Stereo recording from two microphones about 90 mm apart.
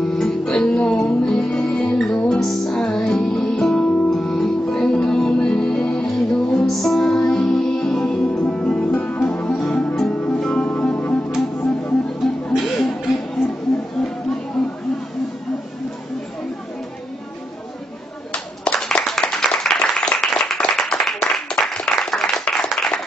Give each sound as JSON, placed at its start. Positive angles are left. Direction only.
{"t": 0.0, "sound": "music", "side_deg": 5}
{"t": 12.5, "sound": "music", "side_deg": 0}
{"t": 18.3, "sound": "clapping", "side_deg": 10}